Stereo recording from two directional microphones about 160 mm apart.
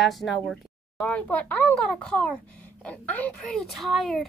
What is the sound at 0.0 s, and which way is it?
Speech, centre (ahead or behind).